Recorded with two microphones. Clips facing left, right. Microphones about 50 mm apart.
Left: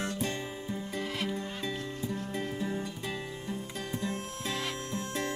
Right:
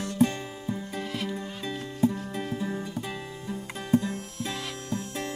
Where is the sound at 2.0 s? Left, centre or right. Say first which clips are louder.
Right 13 dB; right.